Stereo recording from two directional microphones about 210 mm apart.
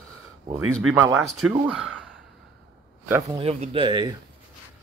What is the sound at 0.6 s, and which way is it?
Speech, 90° right.